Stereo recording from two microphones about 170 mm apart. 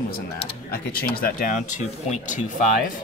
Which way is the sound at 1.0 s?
60° left (ahead or behind).